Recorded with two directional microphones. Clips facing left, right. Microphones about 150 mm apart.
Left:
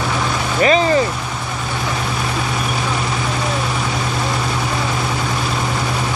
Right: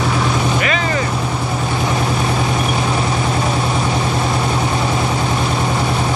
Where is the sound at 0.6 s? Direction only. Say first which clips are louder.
Left 5 dB; 30° left (ahead or behind).